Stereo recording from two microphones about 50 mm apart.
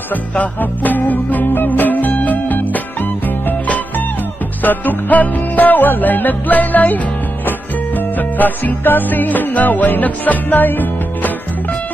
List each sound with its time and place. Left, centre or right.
0.6 s music: left